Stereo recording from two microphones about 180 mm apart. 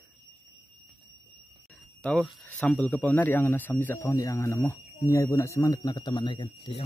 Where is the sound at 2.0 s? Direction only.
5° left (ahead or behind).